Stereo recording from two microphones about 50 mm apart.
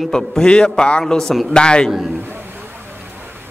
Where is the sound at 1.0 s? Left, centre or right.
Centre.